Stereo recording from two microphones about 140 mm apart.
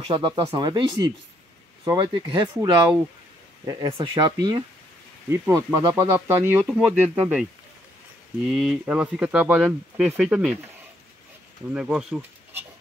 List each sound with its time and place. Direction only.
0.0 s speech: 35° right (ahead or behind)
6.1 s speech: 15° right (ahead or behind)
8.5 s speech: centre (ahead or behind)
11.7 s speech: 5° right (ahead or behind)